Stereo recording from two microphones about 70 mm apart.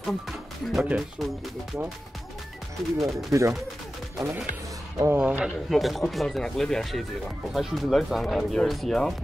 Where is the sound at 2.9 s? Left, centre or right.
Centre.